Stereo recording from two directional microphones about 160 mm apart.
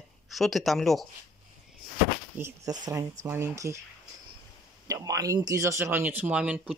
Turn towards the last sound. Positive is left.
turn(degrees=-5)  # may be behind; listen again after turning